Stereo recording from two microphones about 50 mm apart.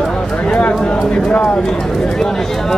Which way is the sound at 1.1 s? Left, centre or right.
Centre.